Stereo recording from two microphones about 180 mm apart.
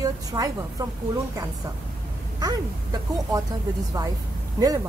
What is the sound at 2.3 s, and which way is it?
Speech, 20° right (ahead or behind).